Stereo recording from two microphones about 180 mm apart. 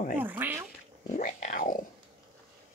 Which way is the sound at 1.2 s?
45° left (ahead or behind).